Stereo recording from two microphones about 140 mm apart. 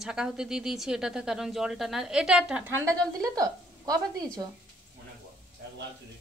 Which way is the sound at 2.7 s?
20° right (ahead or behind).